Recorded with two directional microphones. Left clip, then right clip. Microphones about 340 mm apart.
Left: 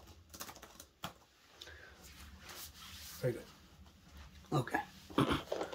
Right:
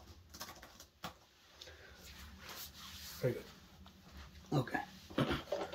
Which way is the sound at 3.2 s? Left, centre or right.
Centre.